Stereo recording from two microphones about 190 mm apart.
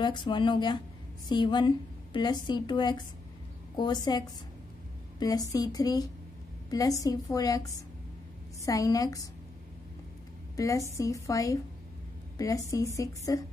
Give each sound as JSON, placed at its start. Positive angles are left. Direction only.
{"t": 0.0, "sound": "a woman's voice", "side_deg": 25}
{"t": 5.2, "sound": "a woman's voice", "side_deg": 20}
{"t": 10.5, "sound": "a woman's voice", "side_deg": 15}